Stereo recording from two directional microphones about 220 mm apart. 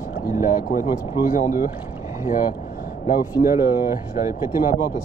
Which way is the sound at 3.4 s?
15° right (ahead or behind).